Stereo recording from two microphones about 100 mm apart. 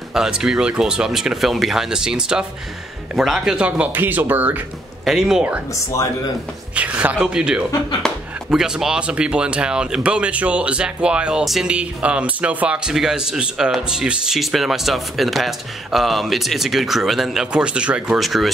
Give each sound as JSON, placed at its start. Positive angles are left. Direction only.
{"t": 0.1, "sound": "speech", "side_deg": -5}
{"t": 5.0, "sound": "speech", "side_deg": -5}
{"t": 6.7, "sound": "speech", "side_deg": -15}
{"t": 8.0, "sound": "speech", "side_deg": 5}
{"t": 8.5, "sound": "speech", "side_deg": -5}
{"t": 18.2, "sound": "speech", "side_deg": 0}